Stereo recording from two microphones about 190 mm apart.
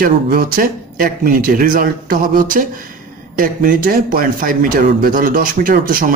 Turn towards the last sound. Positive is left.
turn(degrees=-45)  # may be behind; listen again after turning